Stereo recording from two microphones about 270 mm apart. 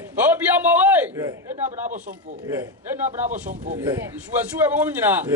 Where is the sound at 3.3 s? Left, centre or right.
Right.